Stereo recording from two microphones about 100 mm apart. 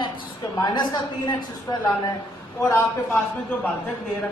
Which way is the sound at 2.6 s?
30° left (ahead or behind).